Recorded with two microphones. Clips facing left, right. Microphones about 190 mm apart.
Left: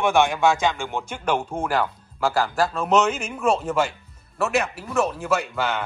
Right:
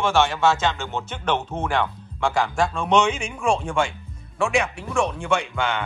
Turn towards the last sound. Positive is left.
turn(degrees=5)  # may be behind; listen again after turning